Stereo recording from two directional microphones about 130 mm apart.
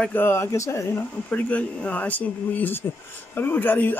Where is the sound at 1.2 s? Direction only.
10° left (ahead or behind).